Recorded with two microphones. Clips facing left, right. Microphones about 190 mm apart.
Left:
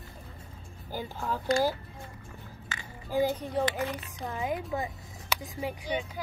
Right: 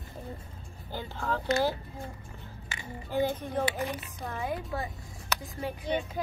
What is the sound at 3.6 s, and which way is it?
Speech, 10° right (ahead or behind).